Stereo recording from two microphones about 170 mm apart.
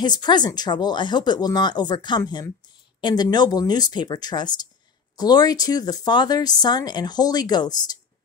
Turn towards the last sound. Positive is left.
turn(degrees=25)  # may be behind; listen again after turning